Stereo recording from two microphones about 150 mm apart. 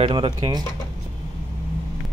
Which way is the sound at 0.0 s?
35° right (ahead or behind).